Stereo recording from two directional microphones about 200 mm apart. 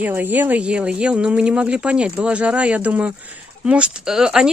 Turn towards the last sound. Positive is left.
turn(degrees=-5)  # may be behind; listen again after turning